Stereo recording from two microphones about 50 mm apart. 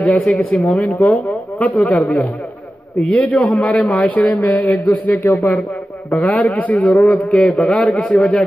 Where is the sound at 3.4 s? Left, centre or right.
Left.